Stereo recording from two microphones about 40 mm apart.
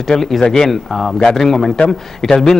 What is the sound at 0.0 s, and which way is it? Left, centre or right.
A man's voice, centre.